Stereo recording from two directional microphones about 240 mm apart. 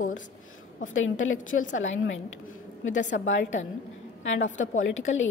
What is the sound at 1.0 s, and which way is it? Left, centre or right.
A woman's voice, left.